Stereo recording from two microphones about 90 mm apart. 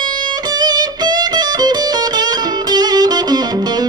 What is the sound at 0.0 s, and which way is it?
Music, 55° right (ahead or behind).